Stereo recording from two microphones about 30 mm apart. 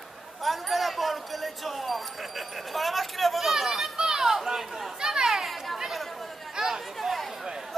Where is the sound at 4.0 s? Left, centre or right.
Centre.